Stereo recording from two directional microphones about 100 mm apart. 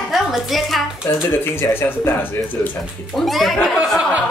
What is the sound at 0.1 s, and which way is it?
Speech, centre (ahead or behind).